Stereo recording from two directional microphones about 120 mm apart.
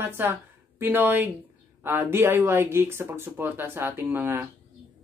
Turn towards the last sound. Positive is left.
turn(degrees=-20)  # may be behind; listen again after turning